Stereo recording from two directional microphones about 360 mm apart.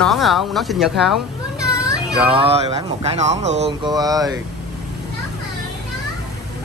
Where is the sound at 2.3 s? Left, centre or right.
Centre.